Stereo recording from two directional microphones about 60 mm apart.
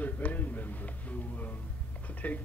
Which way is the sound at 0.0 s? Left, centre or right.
Left.